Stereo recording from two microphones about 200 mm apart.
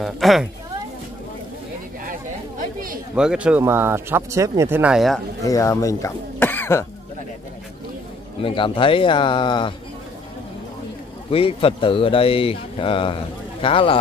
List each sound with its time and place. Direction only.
0.0 s a woman's voice: centre (ahead or behind)
3.2 s speech: 5° right (ahead or behind)
5.4 s speech: 15° left (ahead or behind)
8.4 s speech: 25° left (ahead or behind)
11.2 s speech: 30° left (ahead or behind)